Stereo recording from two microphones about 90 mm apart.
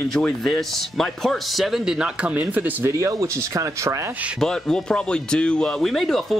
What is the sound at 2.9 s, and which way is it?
Speech, 35° right (ahead or behind).